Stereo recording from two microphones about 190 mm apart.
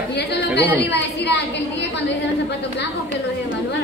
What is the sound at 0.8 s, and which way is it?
Speech, 60° left (ahead or behind).